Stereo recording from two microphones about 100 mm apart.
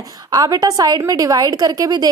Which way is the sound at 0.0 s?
40° right (ahead or behind).